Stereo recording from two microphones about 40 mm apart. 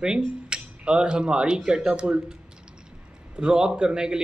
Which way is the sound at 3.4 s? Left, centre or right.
Right.